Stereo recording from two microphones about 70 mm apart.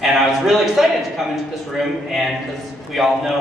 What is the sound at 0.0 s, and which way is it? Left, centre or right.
A man's voice, centre.